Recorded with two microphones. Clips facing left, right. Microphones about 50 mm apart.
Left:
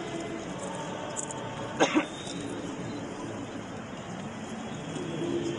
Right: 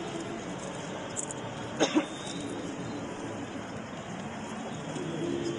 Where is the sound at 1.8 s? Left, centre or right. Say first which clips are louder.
Left 2 dB; left.